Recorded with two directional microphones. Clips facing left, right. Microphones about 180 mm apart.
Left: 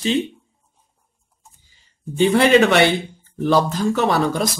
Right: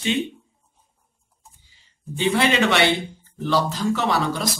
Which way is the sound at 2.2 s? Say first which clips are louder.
Left 6 dB; 50° left (ahead or behind).